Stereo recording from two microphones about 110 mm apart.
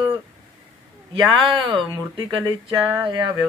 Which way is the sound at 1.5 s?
50° right (ahead or behind).